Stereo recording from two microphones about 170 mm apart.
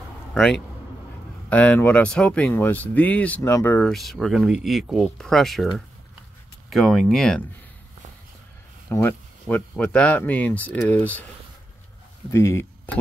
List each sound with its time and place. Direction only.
0.3 s a man's voice: 5° left (ahead or behind)
3.9 s speech: centre (ahead or behind)
6.7 s speech: 5° left (ahead or behind)
8.9 s speech: 10° left (ahead or behind)
12.3 s speech: 15° left (ahead or behind)